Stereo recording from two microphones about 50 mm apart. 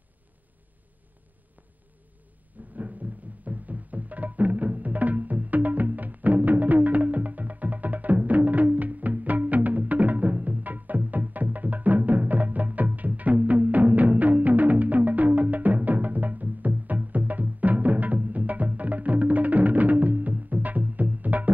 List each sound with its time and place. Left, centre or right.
2.7 s music: right